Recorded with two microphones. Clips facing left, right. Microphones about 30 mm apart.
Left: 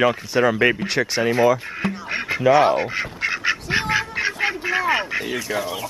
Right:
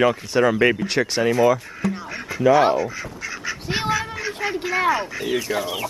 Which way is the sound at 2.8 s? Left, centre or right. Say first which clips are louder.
Left 3 dB; left.